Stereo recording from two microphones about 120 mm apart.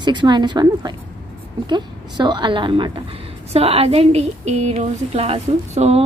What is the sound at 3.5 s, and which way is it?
Speech, 55° right (ahead or behind).